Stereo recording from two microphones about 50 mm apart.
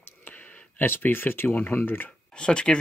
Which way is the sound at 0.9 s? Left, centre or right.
Left.